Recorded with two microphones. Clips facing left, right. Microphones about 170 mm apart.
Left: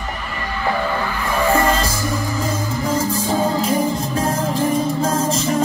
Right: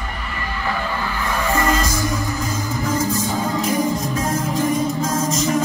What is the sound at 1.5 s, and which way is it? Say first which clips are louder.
Music: even; 30° left (ahead or behind).